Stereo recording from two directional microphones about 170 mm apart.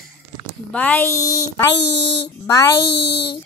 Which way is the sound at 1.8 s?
80° left.